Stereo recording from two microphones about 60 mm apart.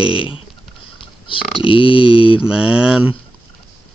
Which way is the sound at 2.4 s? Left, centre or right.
Centre.